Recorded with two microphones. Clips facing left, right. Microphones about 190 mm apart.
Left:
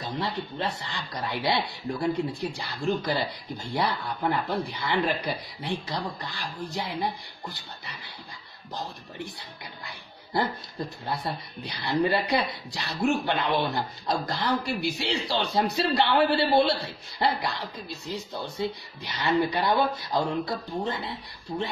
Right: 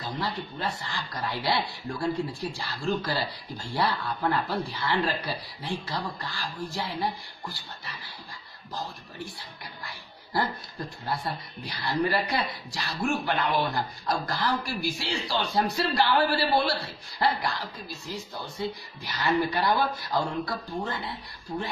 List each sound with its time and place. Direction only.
0.0 s speech: 20° left (ahead or behind)
9.8 s speech: 20° left (ahead or behind)